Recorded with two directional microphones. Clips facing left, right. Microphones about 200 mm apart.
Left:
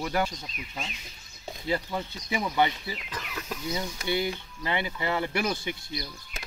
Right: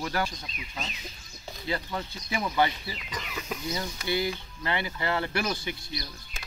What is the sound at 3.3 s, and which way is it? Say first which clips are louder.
Speech: right 1 dB; 5° right (ahead or behind).